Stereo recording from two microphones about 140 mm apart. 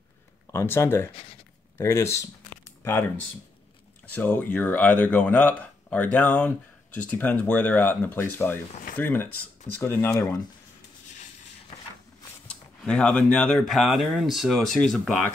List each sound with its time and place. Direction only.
0.5 s speech: 15° left (ahead or behind)
1.1 s speech: 40° left (ahead or behind)
1.8 s speech: 20° left (ahead or behind)
12.4 s speech: 5° left (ahead or behind)